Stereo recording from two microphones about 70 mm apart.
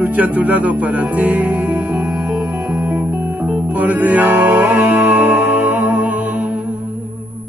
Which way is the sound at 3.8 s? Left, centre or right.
Right.